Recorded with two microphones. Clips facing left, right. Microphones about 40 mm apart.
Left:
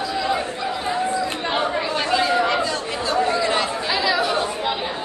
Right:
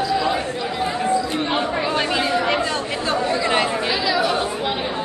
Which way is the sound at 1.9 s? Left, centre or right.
Centre.